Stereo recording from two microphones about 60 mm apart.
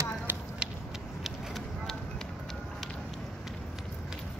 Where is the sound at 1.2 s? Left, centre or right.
Centre.